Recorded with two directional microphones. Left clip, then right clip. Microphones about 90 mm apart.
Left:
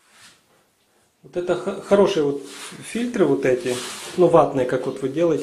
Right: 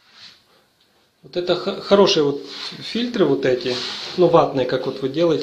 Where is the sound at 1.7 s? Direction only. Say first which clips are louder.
Right 2 dB; 15° right (ahead or behind).